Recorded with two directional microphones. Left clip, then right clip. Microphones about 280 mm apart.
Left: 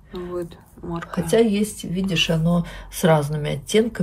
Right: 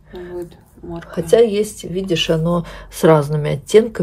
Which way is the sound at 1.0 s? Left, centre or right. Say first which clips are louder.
Right 6 dB; right.